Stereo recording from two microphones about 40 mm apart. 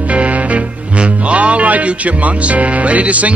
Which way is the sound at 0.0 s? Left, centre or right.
Right.